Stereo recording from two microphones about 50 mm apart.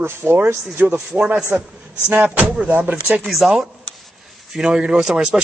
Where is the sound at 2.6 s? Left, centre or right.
Right.